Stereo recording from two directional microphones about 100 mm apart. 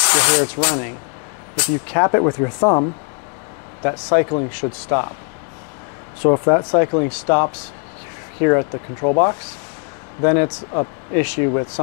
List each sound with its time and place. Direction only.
0.0 s speech: 15° left (ahead or behind)
2.0 s speech: 25° left (ahead or behind)
6.3 s speech: 30° left (ahead or behind)